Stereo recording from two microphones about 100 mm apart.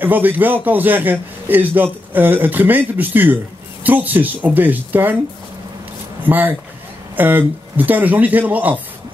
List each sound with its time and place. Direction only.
0.0 s a man's voice: 20° right (ahead or behind)
6.2 s speech: 20° right (ahead or behind)